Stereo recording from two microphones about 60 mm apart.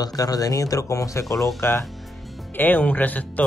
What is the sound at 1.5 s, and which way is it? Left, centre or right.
Speech, left.